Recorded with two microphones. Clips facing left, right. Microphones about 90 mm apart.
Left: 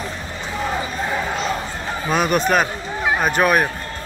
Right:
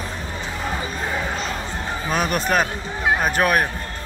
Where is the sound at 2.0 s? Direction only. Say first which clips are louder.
Left 4 dB; centre (ahead or behind).